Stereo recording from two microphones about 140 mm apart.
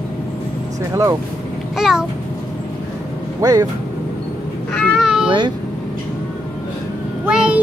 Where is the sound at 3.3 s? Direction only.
25° right (ahead or behind).